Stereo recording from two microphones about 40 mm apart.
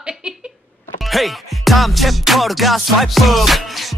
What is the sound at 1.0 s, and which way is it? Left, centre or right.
Music, centre.